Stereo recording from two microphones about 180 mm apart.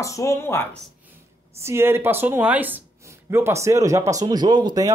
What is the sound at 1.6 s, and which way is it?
Speech, 15° right (ahead or behind).